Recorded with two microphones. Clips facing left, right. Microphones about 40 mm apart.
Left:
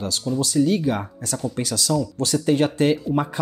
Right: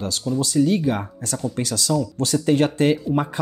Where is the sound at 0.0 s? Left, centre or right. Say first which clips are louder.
Even; right.